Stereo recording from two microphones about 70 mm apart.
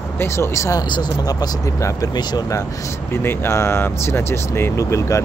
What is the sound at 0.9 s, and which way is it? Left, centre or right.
Speech, left.